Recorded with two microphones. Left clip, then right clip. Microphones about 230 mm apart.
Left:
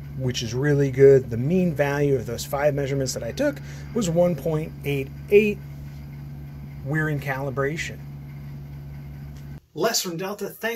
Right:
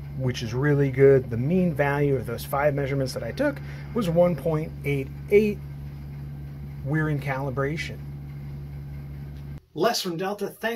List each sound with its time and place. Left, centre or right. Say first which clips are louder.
0.2 s speech: left 1 dB; centre
6.9 s speech: left 2 dB; centre
9.8 s speech: even; centre